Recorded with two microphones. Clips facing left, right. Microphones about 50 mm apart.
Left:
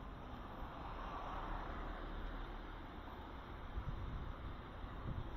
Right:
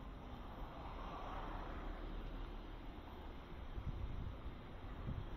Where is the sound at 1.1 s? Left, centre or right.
Left.